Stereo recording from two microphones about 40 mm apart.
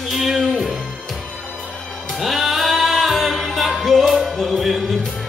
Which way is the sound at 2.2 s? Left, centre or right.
Centre.